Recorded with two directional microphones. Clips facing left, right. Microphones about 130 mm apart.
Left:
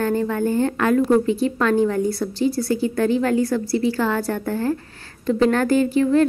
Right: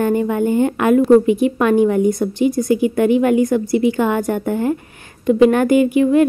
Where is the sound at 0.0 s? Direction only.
15° right (ahead or behind).